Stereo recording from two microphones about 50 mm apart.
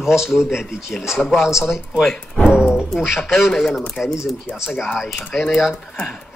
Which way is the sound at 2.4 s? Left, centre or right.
Centre.